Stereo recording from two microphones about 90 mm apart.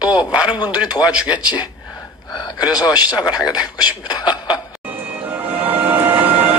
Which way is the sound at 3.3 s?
45° left (ahead or behind).